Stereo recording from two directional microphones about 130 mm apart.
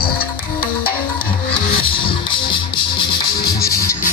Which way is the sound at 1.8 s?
40° left (ahead or behind).